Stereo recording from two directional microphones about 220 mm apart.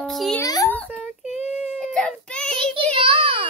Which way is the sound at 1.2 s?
30° left (ahead or behind).